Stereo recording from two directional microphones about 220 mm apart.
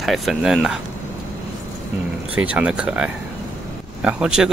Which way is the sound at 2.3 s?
5° right (ahead or behind).